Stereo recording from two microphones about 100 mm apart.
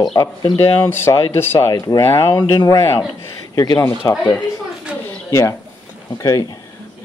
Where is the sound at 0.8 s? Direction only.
25° left (ahead or behind).